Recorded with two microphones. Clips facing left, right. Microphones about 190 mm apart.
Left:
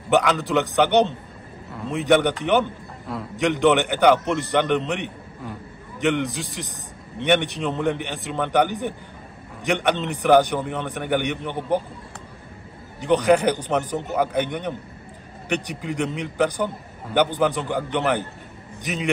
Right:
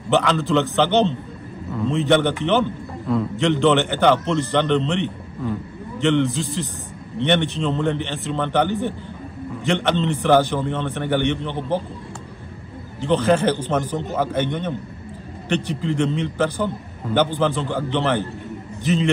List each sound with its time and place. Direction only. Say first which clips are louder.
0.1 s a man's voice: right 1 dB; 10° left (ahead or behind)
13.0 s a man's voice: even; 15° left (ahead or behind)